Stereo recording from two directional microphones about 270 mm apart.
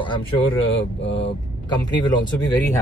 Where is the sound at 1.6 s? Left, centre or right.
Centre.